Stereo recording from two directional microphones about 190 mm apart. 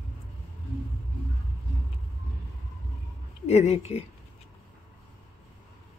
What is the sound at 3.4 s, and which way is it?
Speech, 35° left (ahead or behind).